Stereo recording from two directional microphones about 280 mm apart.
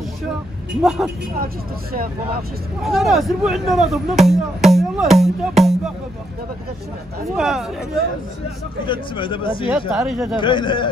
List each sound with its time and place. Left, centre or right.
0.8 s speech: centre
2.8 s speech: centre
7.2 s speech: centre
8.8 s speech: centre
9.7 s speech: centre
10.4 s speech: centre